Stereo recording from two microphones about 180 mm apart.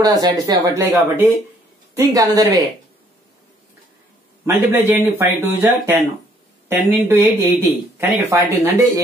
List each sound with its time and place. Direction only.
0.0 s speech: 20° right (ahead or behind)
4.7 s speech: 10° right (ahead or behind)